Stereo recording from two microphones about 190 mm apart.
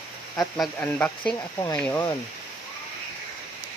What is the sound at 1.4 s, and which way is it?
Speech, 20° left (ahead or behind).